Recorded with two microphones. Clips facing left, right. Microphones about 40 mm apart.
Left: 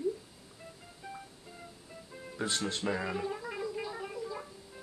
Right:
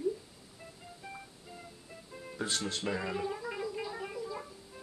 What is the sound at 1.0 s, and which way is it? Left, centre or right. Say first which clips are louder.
Music: left 2 dB; centre.